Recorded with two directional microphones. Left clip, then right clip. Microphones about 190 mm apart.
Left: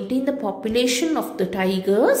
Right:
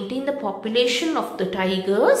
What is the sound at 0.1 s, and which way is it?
A woman's voice, 30° left (ahead or behind).